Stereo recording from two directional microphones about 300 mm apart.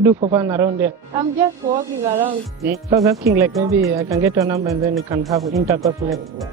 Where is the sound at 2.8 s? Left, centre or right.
Centre.